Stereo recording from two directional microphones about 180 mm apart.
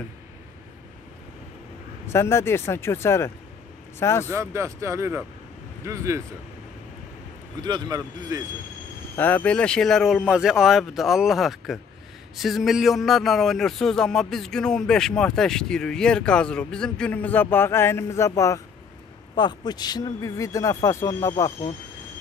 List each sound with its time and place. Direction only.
2.0 s speech: 15° left (ahead or behind)
4.3 s speech: 15° right (ahead or behind)
7.6 s speech: 20° right (ahead or behind)
9.1 s speech: 10° left (ahead or behind)